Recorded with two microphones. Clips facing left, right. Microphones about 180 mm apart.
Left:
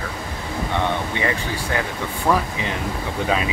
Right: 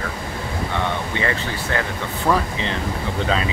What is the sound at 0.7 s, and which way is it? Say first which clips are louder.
Speech: left 2 dB; 15° left (ahead or behind).